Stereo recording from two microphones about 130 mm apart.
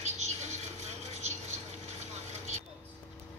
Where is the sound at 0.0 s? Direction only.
60° right (ahead or behind).